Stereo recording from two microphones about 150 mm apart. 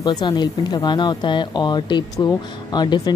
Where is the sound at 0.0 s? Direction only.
25° left (ahead or behind).